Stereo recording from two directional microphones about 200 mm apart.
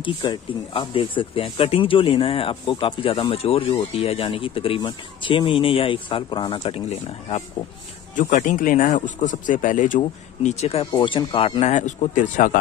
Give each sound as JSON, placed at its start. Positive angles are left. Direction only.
{"t": 0.0, "sound": "a man's voice", "side_deg": 25}